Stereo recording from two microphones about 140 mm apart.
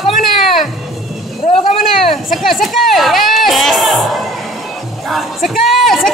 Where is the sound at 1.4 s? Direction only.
65° left (ahead or behind).